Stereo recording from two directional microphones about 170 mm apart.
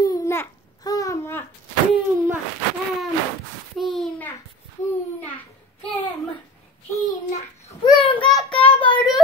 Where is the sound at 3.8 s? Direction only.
Centre (ahead or behind).